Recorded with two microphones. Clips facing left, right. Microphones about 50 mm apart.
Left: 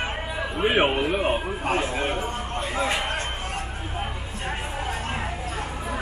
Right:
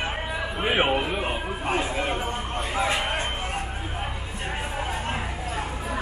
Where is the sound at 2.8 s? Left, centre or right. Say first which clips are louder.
Right 1 dB; centre.